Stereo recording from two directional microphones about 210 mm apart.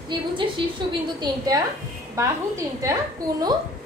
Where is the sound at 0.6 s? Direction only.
25° right (ahead or behind).